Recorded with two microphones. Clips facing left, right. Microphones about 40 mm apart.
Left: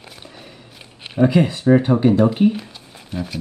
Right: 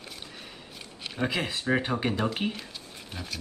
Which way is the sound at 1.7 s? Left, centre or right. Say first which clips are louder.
Left 12 dB; centre.